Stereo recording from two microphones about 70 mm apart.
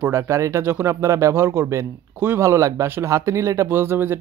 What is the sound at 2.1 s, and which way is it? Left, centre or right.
Speech, right.